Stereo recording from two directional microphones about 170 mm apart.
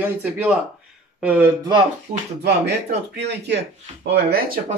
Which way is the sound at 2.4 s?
80° right.